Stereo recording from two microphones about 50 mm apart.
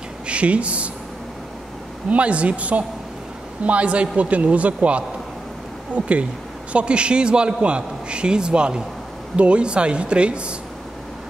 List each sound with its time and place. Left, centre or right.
0.3 s a man's voice: right
2.0 s a man's voice: right